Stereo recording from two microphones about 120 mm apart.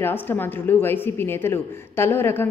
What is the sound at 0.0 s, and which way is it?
Speech, 20° left (ahead or behind).